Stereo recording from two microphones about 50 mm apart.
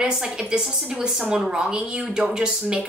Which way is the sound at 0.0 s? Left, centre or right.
Centre.